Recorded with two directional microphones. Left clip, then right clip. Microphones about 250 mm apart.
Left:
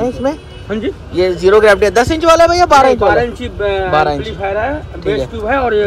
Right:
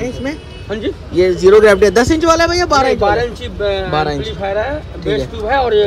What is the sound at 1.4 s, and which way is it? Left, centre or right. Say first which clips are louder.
A man's voice: even; centre.